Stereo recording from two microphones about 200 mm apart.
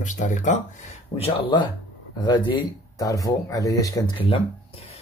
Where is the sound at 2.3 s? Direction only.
25° left (ahead or behind).